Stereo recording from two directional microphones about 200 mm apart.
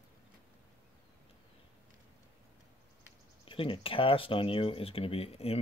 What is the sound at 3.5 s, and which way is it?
Speech, 25° left (ahead or behind).